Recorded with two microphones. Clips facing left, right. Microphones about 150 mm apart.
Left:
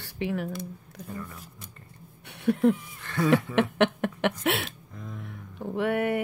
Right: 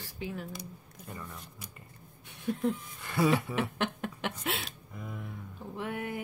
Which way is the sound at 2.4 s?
70° left (ahead or behind).